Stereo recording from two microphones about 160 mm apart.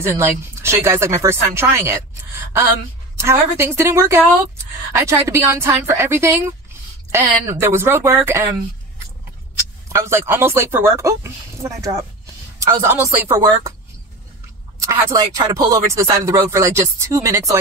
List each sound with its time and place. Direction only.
0.0 s speech: 15° right (ahead or behind)
9.6 s speech: 15° right (ahead or behind)
14.8 s speech: 15° right (ahead or behind)